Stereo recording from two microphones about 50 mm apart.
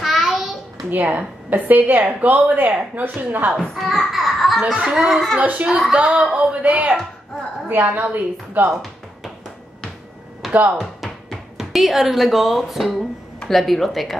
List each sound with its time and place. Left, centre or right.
0.0 s a sound: centre
0.8 s a woman's voice: right
3.7 s a sound: centre
4.9 s speech: centre
5.4 s speech: right
7.6 s a woman's voice: right
10.5 s speech: right
11.0 s speech: centre